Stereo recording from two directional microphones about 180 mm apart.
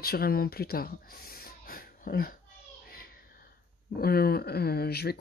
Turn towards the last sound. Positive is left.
turn(degrees=60)  # may be behind; listen again after turning